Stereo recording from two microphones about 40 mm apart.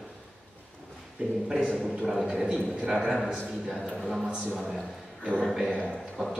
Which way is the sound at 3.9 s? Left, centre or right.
Centre.